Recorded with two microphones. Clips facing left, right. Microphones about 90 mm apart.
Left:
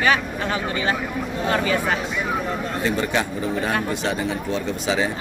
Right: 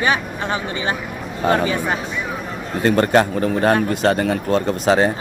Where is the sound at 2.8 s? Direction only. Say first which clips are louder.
Right 9 dB; 55° right (ahead or behind).